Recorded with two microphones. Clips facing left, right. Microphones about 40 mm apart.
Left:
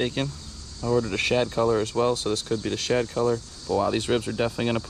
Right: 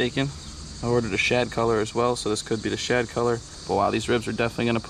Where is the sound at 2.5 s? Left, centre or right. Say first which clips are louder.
Right 1 dB; centre.